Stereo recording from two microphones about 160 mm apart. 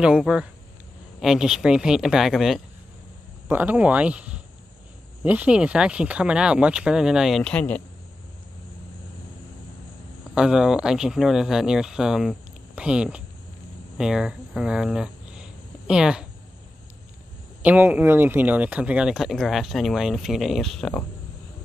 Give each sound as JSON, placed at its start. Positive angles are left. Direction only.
{"t": 0.0, "sound": "speech", "side_deg": -5}
{"t": 10.3, "sound": "speech", "side_deg": -5}
{"t": 13.9, "sound": "a sound", "side_deg": -5}
{"t": 17.6, "sound": "speech", "side_deg": -10}